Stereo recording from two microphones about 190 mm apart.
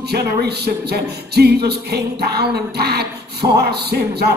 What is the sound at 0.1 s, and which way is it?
Music, 60° right (ahead or behind).